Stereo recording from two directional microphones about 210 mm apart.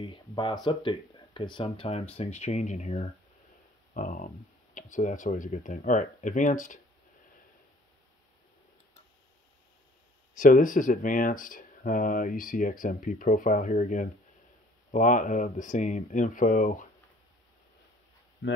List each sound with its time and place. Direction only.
0.0 s speech: 25° left (ahead or behind)
10.3 s speech: 40° left (ahead or behind)
18.4 s speech: 60° left (ahead or behind)